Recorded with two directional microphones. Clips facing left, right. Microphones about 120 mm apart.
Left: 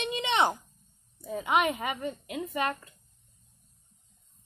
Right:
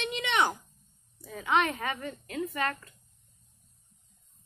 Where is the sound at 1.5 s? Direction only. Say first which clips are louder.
Even; 15° left (ahead or behind).